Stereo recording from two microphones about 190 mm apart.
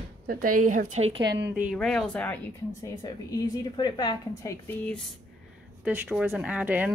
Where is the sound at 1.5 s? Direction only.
10° right (ahead or behind).